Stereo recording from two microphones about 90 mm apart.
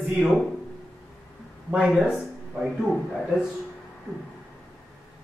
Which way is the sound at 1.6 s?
5° right (ahead or behind).